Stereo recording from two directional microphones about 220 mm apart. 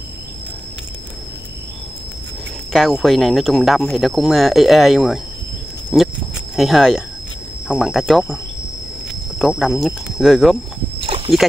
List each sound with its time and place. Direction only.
2.7 s speech: centre (ahead or behind)
9.4 s speech: centre (ahead or behind)
11.0 s a sound: 25° right (ahead or behind)